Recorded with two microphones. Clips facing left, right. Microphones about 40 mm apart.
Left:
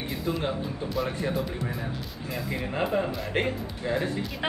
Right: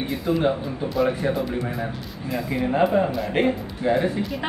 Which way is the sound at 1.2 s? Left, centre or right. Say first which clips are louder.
Right 5 dB; right.